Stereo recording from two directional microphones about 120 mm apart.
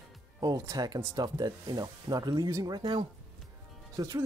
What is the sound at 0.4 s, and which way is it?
Speech, 30° right (ahead or behind).